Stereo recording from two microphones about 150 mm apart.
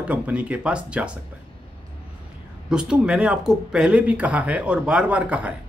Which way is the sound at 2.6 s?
5° right (ahead or behind).